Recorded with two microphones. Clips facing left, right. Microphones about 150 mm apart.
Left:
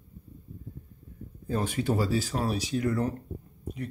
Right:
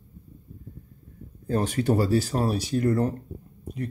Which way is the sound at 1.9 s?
45° right (ahead or behind).